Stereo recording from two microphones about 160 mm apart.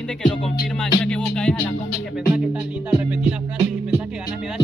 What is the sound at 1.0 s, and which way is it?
Music, 5° left (ahead or behind).